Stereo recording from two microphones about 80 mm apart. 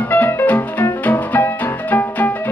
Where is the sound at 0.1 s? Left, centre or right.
Left.